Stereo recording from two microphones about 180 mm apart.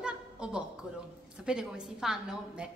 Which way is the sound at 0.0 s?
5° right (ahead or behind).